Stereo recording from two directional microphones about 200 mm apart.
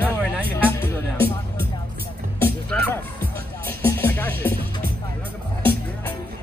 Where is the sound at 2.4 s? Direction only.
10° left (ahead or behind).